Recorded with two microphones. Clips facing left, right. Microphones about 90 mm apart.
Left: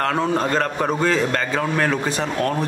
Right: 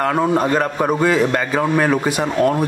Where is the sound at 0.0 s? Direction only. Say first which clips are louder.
Right 4 dB; 10° right (ahead or behind).